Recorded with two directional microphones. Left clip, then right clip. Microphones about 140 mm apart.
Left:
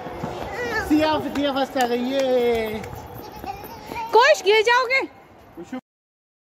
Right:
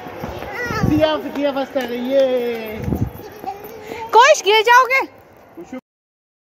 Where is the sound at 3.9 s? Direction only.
15° left (ahead or behind).